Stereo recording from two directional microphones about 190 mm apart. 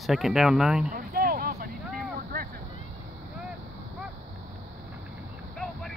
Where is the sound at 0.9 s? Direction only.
50° right (ahead or behind).